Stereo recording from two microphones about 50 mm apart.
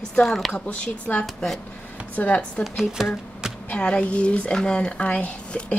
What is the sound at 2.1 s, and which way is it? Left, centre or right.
Speech, left.